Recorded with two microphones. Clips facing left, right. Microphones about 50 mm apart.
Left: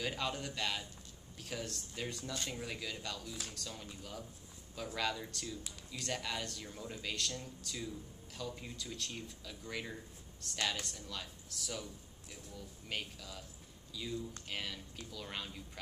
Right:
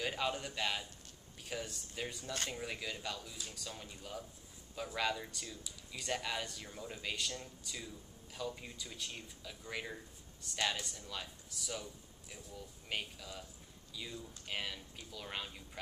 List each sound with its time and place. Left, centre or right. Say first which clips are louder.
0.0 s speech: right 1 dB; centre